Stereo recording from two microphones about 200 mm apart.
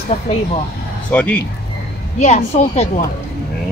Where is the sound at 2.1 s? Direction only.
35° left (ahead or behind).